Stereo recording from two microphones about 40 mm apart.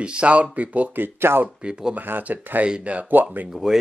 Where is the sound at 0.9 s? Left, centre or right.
Right.